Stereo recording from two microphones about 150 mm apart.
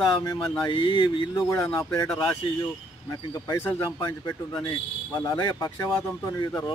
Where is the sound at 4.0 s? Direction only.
25° left (ahead or behind).